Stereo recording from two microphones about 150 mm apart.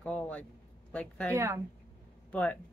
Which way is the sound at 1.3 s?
20° right (ahead or behind).